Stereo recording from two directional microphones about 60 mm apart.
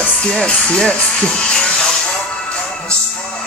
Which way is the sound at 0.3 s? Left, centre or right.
Centre.